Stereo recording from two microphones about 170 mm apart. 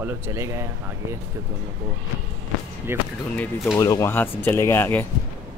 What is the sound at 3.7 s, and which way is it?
Speech, 15° left (ahead or behind).